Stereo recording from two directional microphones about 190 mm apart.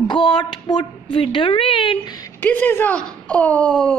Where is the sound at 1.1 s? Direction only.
30° left (ahead or behind).